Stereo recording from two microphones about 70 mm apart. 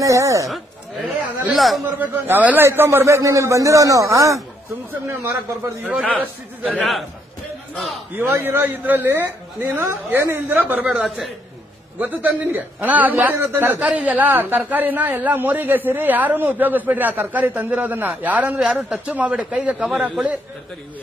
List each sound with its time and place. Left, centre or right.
0.0 s a man's voice: right
0.5 s a sound: centre
1.5 s a man's voice: centre
2.0 s a man's voice: right
6.7 s a man's voice: centre
8.2 s a man's voice: right
11.1 s a man's voice: centre
12.0 s a man's voice: right
13.8 s a man's voice: centre